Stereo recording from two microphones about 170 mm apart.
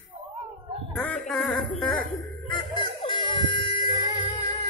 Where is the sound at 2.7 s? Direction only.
30° left (ahead or behind).